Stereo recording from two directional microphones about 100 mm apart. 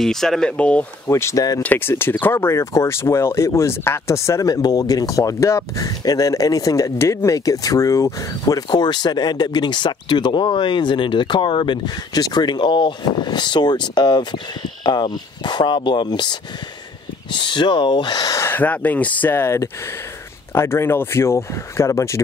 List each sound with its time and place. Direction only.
0.0 s speech: 5° left (ahead or behind)
1.0 s speech: 30° left (ahead or behind)
1.6 s speech: 20° left (ahead or behind); by 18.4 s 40° left (ahead or behind)
18.4 s speech: 20° left (ahead or behind)